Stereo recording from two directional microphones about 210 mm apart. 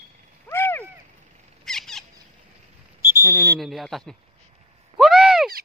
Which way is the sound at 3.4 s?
Centre (ahead or behind).